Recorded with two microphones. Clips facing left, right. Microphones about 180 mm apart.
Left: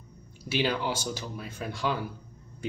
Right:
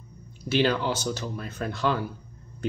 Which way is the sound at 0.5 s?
10° left (ahead or behind).